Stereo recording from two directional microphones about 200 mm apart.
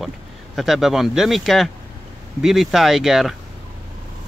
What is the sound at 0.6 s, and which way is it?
Speech, centre (ahead or behind).